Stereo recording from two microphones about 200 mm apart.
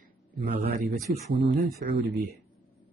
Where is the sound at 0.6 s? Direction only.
50° right (ahead or behind).